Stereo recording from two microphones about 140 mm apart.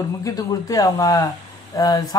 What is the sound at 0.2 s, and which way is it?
Speech, 25° left (ahead or behind).